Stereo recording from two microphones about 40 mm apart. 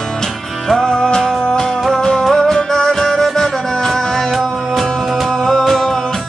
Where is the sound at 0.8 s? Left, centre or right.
Centre.